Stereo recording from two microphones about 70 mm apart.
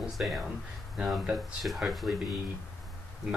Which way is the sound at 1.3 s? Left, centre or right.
Centre.